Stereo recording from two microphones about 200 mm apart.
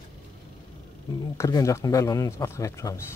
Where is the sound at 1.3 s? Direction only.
15° left (ahead or behind).